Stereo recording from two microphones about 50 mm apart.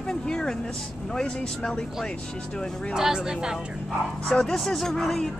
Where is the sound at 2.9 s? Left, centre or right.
Centre.